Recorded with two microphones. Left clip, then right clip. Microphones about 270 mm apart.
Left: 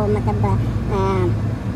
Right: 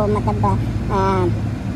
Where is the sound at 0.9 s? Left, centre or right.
Right.